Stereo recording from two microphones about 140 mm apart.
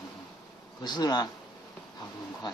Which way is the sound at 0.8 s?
30° left (ahead or behind).